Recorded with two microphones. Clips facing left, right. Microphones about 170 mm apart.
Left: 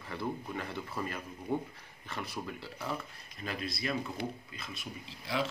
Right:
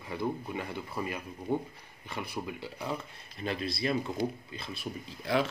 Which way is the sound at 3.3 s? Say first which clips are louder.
Right 5 dB; 30° right (ahead or behind).